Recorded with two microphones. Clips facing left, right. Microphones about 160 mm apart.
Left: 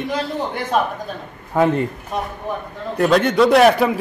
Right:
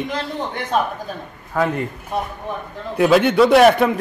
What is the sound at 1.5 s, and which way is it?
Speech, 20° left (ahead or behind).